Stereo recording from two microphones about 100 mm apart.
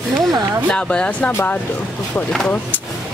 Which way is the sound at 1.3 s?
25° left (ahead or behind).